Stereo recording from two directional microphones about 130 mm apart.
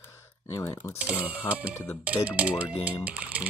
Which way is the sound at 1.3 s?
10° right (ahead or behind).